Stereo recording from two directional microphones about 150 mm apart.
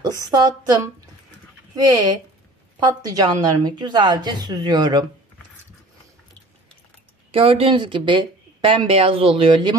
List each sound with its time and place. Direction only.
0.0 s a woman's voice: 25° right (ahead or behind)
2.8 s a woman's voice: 25° right (ahead or behind)
7.2 s speech: 40° right (ahead or behind)